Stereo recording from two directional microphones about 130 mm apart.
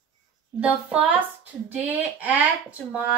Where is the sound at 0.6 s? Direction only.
10° right (ahead or behind).